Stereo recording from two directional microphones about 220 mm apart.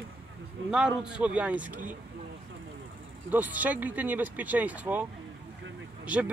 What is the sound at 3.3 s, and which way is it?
Speech, 5° right (ahead or behind).